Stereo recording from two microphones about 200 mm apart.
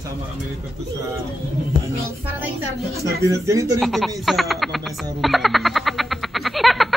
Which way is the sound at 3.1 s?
15° right (ahead or behind).